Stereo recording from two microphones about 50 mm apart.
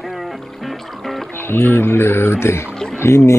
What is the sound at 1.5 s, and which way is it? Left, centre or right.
Speech, left.